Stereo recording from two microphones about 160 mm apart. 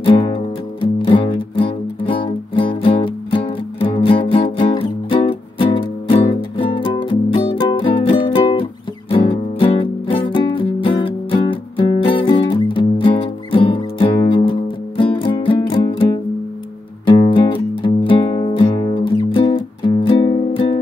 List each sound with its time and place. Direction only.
0.7 s music: 35° left (ahead or behind)
17.3 s music: 30° left (ahead or behind)